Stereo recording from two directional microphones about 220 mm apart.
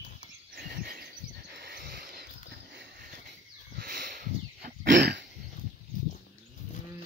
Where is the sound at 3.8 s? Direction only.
40° right (ahead or behind).